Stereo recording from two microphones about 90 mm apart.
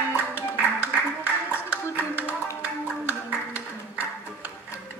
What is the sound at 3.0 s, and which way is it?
Music, 20° right (ahead or behind).